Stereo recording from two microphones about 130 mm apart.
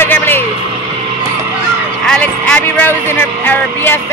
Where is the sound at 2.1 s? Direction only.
10° left (ahead or behind).